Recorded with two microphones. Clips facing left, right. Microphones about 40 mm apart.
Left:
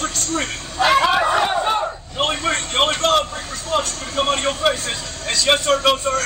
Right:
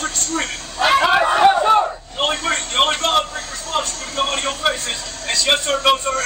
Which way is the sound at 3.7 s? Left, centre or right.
Centre.